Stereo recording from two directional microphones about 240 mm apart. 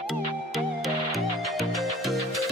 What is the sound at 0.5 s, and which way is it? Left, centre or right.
Music, centre.